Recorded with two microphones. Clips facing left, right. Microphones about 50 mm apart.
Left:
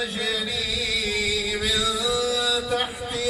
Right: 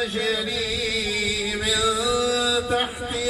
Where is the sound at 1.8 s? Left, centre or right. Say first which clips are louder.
Right 3 dB; centre.